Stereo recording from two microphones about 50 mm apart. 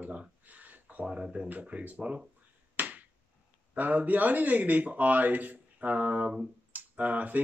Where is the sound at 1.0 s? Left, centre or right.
Right.